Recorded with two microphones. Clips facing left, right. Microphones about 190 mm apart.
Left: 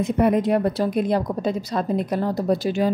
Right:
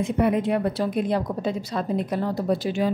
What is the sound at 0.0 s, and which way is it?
A woman's voice, 40° left (ahead or behind).